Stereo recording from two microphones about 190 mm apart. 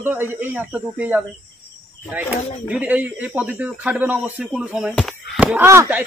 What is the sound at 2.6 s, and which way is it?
Speech, 10° right (ahead or behind).